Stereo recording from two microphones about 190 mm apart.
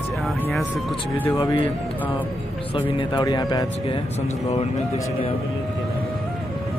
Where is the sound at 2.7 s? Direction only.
25° left (ahead or behind).